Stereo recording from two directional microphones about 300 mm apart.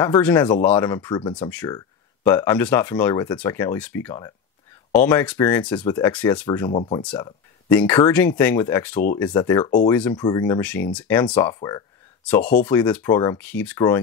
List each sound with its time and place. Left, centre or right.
0.0 s speech: centre
6.7 s speech: centre